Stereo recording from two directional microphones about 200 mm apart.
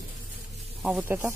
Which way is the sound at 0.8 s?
5° right (ahead or behind).